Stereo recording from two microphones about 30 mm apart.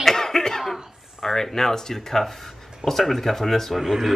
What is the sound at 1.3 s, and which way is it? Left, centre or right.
Speech, centre.